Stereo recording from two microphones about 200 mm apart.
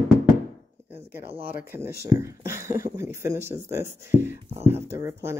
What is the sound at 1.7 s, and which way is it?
Speech, 10° right (ahead or behind).